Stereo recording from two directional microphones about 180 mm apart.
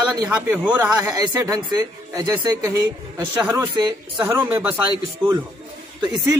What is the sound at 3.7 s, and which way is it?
Speech, 25° right (ahead or behind).